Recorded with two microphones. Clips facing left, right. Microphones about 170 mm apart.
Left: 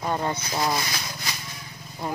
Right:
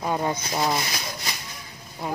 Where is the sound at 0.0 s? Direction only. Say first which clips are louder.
Right 1 dB; 10° right (ahead or behind).